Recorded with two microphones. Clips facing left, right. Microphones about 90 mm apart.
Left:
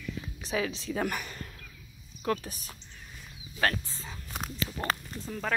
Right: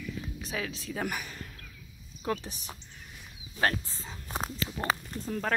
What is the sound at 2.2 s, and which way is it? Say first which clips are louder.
Speech: left 2 dB; 20° right (ahead or behind).